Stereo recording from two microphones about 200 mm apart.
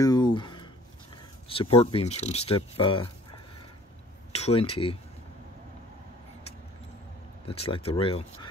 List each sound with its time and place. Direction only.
0.0 s a sound: 20° left (ahead or behind)
1.5 s speech: 30° left (ahead or behind)
4.3 s speech: 30° left (ahead or behind)
7.4 s speech: 30° left (ahead or behind)